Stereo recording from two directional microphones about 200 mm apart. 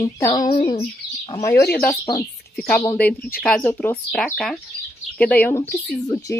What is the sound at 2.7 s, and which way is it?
Speech, 10° left (ahead or behind).